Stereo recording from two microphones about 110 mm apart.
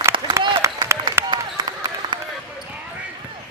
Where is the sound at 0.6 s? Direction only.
30° right (ahead or behind).